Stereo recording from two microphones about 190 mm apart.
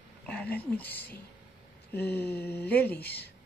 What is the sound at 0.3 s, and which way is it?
Speech, 5° left (ahead or behind).